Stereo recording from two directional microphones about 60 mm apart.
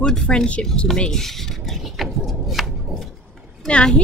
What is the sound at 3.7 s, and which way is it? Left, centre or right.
Speech, centre.